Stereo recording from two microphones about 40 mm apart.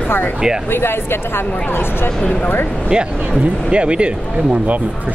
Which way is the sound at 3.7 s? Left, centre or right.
Right.